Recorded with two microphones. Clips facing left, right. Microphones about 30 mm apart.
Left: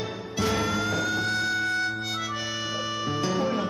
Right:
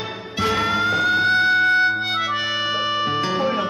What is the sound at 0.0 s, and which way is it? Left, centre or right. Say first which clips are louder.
Music: right 5 dB; right.